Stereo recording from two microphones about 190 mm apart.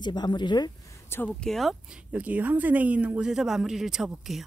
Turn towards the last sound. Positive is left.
turn(degrees=0)  # may be behind; listen again after turning